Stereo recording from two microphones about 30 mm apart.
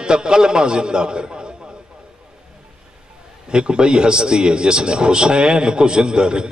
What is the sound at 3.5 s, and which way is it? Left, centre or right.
A man's voice, right.